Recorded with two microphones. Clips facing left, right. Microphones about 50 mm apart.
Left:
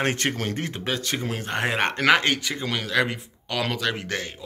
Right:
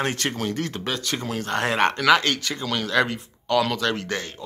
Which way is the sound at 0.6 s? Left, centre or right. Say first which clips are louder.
Right 1 dB; left.